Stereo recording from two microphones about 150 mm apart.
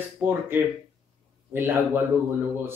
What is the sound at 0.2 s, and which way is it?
Speech, 15° right (ahead or behind).